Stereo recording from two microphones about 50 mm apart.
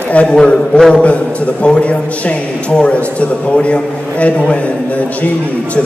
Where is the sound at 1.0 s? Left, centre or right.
Left.